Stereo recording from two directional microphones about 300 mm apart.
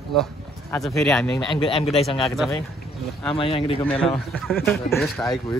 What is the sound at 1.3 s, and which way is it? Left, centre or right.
Speech, centre.